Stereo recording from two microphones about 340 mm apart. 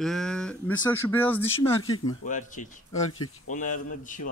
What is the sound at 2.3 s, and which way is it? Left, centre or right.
Speech, left.